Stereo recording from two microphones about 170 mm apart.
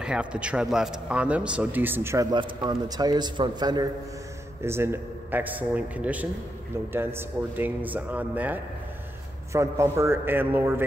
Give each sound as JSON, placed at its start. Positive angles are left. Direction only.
{"t": 0.0, "sound": "speech", "side_deg": -5}
{"t": 2.3, "sound": "a man's voice", "side_deg": -25}
{"t": 4.6, "sound": "speech", "side_deg": -15}